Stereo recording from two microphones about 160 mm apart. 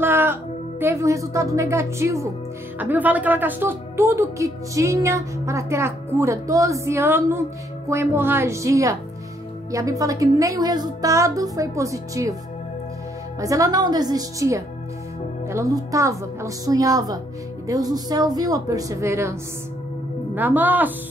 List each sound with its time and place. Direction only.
0.0 s a woman's voice: 15° right (ahead or behind)
13.4 s a woman's voice: 20° right (ahead or behind)
20.3 s a woman's voice: 10° right (ahead or behind)